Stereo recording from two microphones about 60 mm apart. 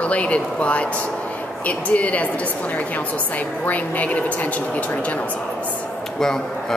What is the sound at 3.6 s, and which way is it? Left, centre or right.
A woman's voice, left.